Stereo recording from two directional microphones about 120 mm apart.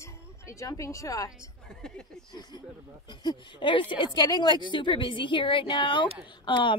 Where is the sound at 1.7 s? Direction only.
5° left (ahead or behind).